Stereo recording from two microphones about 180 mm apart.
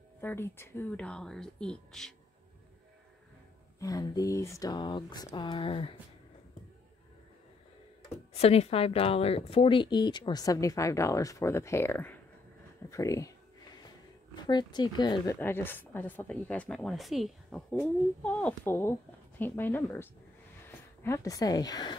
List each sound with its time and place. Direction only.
0.2 s speech: 10° left (ahead or behind)
3.8 s a woman's voice: 20° left (ahead or behind)
8.3 s a woman's voice: 35° left (ahead or behind); by 12.2 s 10° left (ahead or behind)
12.9 s a sound: 15° left (ahead or behind)
14.3 s speech: 25° left (ahead or behind)
15.2 s a woman's voice: 10° left (ahead or behind)